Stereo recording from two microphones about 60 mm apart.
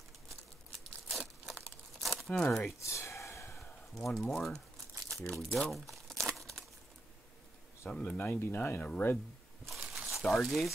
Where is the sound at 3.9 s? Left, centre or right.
Centre.